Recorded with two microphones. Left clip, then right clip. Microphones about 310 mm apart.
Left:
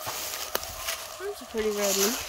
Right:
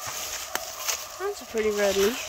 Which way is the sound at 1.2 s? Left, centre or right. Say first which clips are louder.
Right 5 dB; centre.